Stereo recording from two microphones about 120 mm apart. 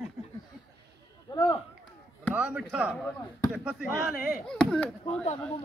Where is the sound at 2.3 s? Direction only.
10° right (ahead or behind).